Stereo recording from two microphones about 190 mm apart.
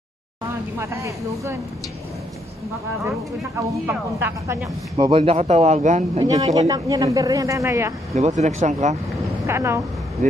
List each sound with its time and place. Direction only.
0.7 s speech: 15° right (ahead or behind)
3.5 s speech: 10° right (ahead or behind)
4.9 s speech: 25° right (ahead or behind)
6.1 s speech: 20° right (ahead or behind)
8.1 s speech: 35° right (ahead or behind)
9.5 s speech: 15° right (ahead or behind)